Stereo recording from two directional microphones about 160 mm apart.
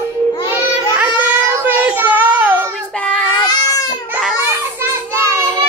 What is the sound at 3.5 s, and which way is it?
Baby cry, 25° left (ahead or behind).